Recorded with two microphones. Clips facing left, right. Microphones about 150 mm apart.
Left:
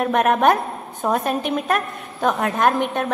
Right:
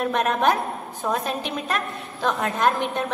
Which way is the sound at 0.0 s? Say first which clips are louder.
Left 4 dB; 55° left (ahead or behind).